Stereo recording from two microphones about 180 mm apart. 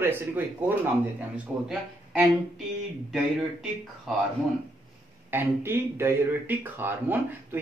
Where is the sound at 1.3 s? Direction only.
5° right (ahead or behind).